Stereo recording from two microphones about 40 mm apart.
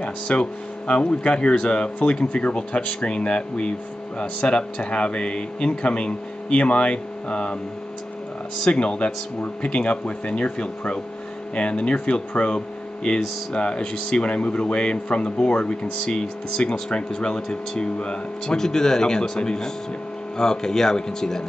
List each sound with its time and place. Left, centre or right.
0.0 s speech: left
8.5 s speech: left